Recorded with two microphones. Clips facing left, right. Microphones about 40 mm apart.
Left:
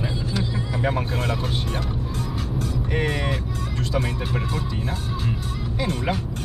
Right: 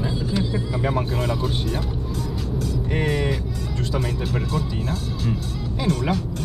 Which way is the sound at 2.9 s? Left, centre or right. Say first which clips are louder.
Right 2 dB; centre.